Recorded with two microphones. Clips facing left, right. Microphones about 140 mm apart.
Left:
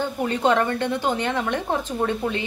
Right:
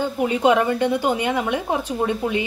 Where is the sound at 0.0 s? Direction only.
10° right (ahead or behind).